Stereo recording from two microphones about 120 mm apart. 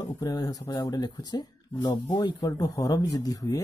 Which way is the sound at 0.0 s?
30° left (ahead or behind).